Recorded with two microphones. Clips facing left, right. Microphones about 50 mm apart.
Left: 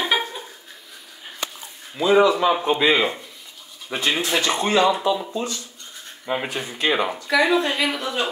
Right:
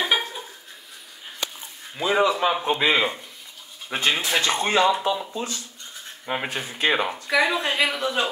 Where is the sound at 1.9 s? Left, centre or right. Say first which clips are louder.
Left 5 dB; centre.